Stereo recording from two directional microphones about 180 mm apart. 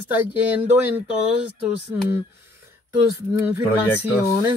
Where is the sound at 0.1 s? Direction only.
10° right (ahead or behind).